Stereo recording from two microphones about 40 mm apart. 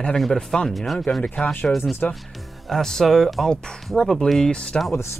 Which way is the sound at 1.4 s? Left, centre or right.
Left.